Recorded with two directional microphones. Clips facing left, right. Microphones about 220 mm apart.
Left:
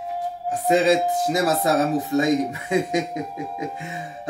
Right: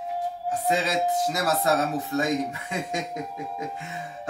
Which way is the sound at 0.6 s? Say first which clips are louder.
Left 7 dB; 15° left (ahead or behind).